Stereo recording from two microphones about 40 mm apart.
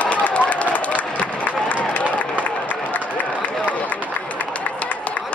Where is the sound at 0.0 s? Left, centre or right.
Left.